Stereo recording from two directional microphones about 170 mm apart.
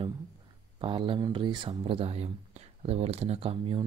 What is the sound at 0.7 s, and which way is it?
Speech, 30° right (ahead or behind).